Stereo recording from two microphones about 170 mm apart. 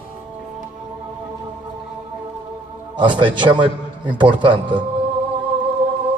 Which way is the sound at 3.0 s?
30° right (ahead or behind).